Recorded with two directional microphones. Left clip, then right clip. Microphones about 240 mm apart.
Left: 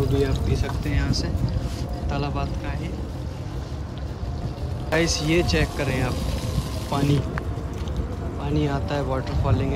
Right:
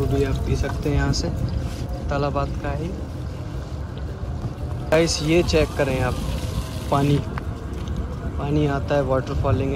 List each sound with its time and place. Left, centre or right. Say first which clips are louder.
0.1 s speech: right 1 dB; centre
4.8 s speech: right 3 dB; centre